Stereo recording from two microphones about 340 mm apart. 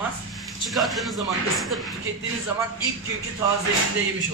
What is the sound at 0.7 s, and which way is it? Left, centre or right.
A man's voice, centre.